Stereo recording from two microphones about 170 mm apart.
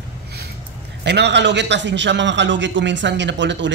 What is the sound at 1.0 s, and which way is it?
A man's voice, 90° right.